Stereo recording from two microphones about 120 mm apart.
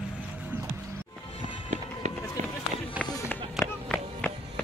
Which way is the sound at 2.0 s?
70° right (ahead or behind).